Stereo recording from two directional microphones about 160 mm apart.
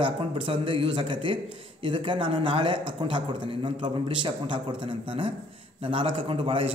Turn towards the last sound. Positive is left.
turn(degrees=-35)  # may be behind; listen again after turning